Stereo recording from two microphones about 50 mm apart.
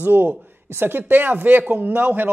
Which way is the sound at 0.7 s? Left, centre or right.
Right.